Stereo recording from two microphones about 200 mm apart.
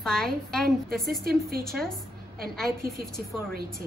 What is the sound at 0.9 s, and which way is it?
Speech, 50° right (ahead or behind).